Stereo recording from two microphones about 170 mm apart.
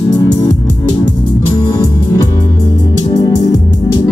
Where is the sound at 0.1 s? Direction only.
25° left (ahead or behind).